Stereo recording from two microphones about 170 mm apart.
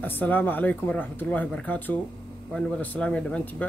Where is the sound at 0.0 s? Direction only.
10° left (ahead or behind).